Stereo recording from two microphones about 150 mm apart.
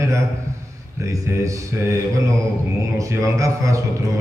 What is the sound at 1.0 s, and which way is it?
A man's voice, 20° right (ahead or behind).